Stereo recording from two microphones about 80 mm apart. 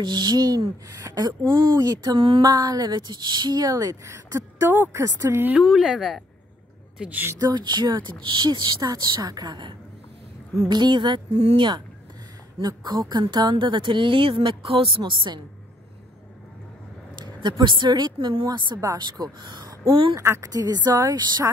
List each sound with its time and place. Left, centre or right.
0.0 s a woman's voice: right
4.9 s speech: right
5.6 s speech: centre
7.0 s a woman's voice: centre
7.3 s a woman's voice: right
12.6 s a woman's voice: right
17.2 s speech: right
18.9 s a woman's voice: right
19.9 s a woman's voice: right
20.2 s a woman's voice: right